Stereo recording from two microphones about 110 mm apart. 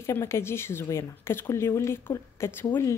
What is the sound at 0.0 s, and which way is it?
Speech, 25° left (ahead or behind).